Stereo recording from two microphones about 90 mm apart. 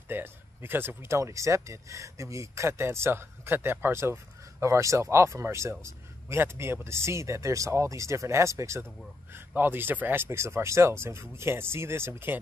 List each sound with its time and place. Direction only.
0.1 s speech: 25° right (ahead or behind)
9.3 s speech: 25° right (ahead or behind)